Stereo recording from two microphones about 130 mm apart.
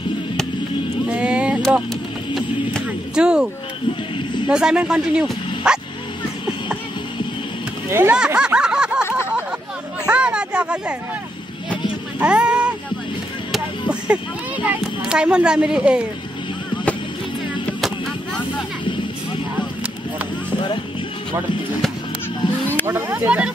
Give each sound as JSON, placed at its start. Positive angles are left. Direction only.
{"t": 1.0, "sound": "a sound", "side_deg": -10}
{"t": 2.3, "sound": "music", "side_deg": -5}
{"t": 4.5, "sound": "speech", "side_deg": -5}
{"t": 7.9, "sound": "speech", "side_deg": -20}
{"t": 8.2, "sound": "snicker", "side_deg": -10}
{"t": 10.0, "sound": "a sound", "side_deg": -10}
{"t": 12.2, "sound": "speech", "side_deg": -10}
{"t": 22.9, "sound": "speech", "side_deg": -15}